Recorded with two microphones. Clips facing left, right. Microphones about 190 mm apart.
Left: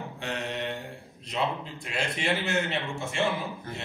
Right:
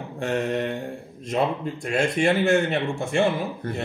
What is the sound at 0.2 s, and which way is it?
Speech, 45° right (ahead or behind).